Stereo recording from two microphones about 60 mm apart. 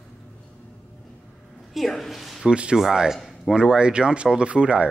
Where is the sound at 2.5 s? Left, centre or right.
Centre.